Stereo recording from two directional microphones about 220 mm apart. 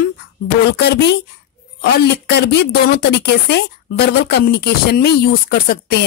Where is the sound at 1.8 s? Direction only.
50° left (ahead or behind).